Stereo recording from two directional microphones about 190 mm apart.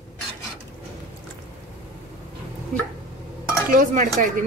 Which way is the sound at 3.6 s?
45° right (ahead or behind).